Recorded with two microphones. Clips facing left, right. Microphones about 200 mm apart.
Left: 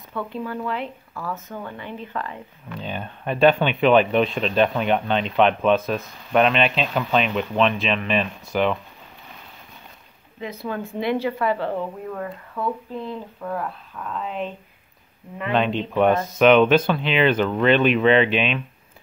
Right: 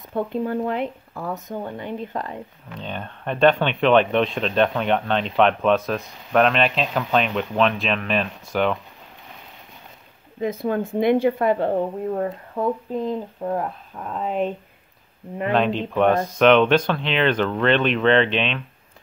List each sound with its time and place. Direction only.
0.1 s speech: 45° right (ahead or behind)
2.8 s speech: 5° left (ahead or behind)
10.4 s speech: 50° right (ahead or behind)
11.7 s speech: 35° right (ahead or behind)
15.5 s speech: centre (ahead or behind)